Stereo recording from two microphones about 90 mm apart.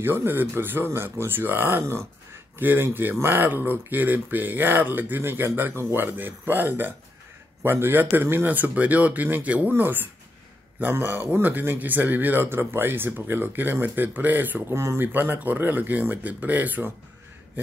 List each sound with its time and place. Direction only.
0.0 s speech: 25° right (ahead or behind)
14.7 s speech: 30° right (ahead or behind)